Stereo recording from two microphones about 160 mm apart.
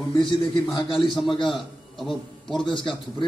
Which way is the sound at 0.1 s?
30° left (ahead or behind).